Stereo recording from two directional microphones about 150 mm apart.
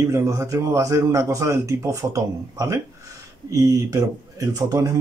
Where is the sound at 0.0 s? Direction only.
20° right (ahead or behind).